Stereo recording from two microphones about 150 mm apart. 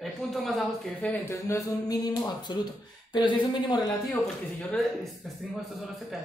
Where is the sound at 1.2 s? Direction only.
20° left (ahead or behind).